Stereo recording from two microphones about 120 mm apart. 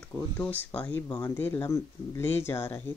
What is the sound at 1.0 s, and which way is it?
Speech, 25° left (ahead or behind).